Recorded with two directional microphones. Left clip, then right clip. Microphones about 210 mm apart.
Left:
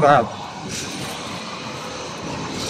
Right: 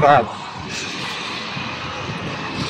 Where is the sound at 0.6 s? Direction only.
50° left (ahead or behind).